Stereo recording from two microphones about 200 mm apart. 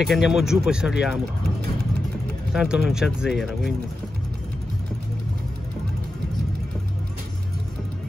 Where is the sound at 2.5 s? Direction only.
Centre (ahead or behind).